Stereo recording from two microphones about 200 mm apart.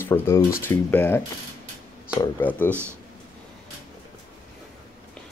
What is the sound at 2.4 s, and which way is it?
Speech, 10° left (ahead or behind).